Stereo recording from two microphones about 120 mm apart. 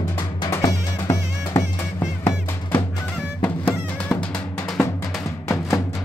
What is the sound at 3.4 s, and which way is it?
Music, 10° left (ahead or behind).